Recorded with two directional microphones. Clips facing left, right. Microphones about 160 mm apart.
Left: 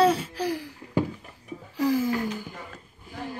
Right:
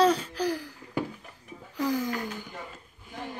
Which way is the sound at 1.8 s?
5° left (ahead or behind).